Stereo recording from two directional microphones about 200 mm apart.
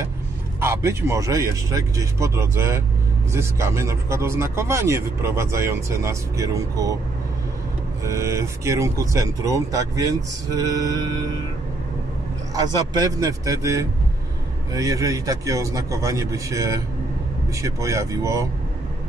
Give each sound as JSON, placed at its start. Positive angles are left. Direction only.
{"t": 0.6, "sound": "speech", "side_deg": -15}
{"t": 8.0, "sound": "speech", "side_deg": -15}
{"t": 12.5, "sound": "speech", "side_deg": -20}